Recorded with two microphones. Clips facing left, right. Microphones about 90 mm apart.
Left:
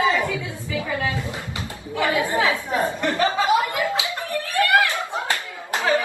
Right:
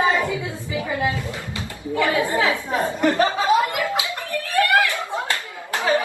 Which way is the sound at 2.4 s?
25° right (ahead or behind).